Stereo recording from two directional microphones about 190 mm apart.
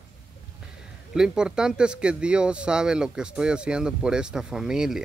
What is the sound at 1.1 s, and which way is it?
Speech, 5° right (ahead or behind).